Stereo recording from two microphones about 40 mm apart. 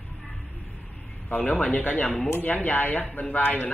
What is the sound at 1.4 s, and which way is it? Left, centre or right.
Speech, left.